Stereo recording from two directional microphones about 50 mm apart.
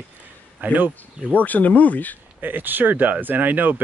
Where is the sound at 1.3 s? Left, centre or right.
Left.